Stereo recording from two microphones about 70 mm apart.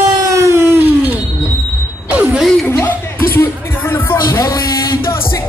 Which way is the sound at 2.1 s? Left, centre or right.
Right.